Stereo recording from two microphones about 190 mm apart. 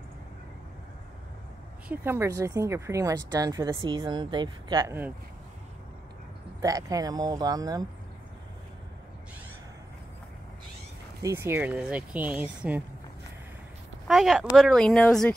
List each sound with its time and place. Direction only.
1.9 s speech: 15° right (ahead or behind)
6.6 s speech: 20° right (ahead or behind)
11.2 s speech: 15° right (ahead or behind)
14.0 s speech: centre (ahead or behind)